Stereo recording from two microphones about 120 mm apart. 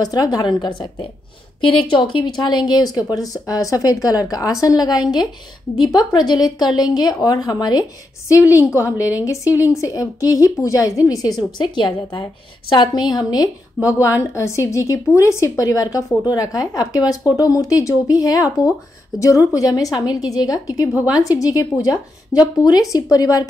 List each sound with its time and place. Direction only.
0.0 s speech: 35° left (ahead or behind)